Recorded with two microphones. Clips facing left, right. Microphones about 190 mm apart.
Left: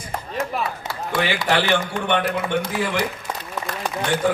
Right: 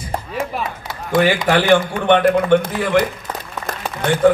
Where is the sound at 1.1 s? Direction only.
50° right (ahead or behind).